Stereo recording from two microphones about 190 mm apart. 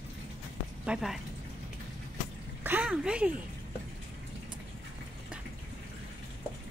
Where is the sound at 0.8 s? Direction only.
Centre (ahead or behind).